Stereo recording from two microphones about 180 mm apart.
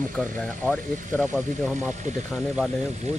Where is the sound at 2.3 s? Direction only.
Centre (ahead or behind).